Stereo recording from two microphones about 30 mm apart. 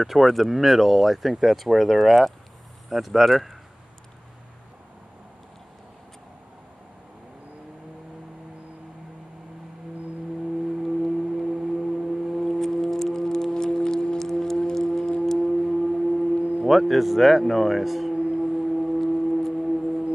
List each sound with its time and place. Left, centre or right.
0.0 s speech: centre
10.8 s singing bowl: centre
12.8 s music: centre
15.3 s singing bowl: centre
16.6 s speech: centre
18.4 s music: centre